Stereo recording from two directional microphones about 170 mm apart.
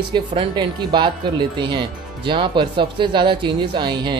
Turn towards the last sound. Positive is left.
turn(degrees=-25)  # may be behind; listen again after turning